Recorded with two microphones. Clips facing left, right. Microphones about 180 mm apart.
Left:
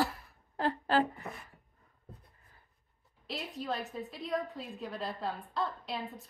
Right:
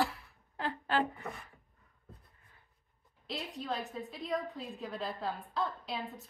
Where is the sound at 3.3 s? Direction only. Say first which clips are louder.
Left 1 dB; centre (ahead or behind).